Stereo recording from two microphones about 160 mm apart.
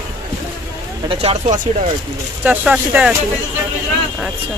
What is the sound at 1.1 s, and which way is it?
Speech, 40° right (ahead or behind).